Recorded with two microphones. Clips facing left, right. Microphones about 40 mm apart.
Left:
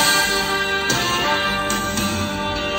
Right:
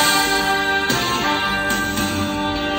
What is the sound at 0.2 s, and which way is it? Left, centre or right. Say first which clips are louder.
Music: right 2 dB; right.